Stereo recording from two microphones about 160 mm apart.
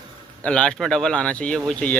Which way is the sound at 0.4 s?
5° left (ahead or behind).